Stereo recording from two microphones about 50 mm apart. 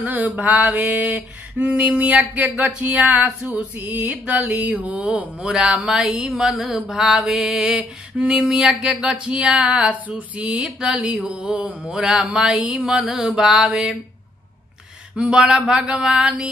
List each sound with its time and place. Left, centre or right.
0.2 s a sound: right
1.7 s mantra: centre
2.1 s a sound: right
5.4 s mantra: centre
11.2 s mantra: centre
11.5 s mantra: right
11.9 s mantra: centre
15.1 s mantra: centre